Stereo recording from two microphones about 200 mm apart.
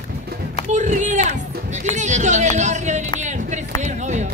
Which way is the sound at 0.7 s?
35° right (ahead or behind).